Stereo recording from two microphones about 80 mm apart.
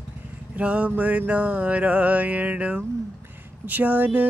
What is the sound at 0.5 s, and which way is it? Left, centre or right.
Mantra, centre.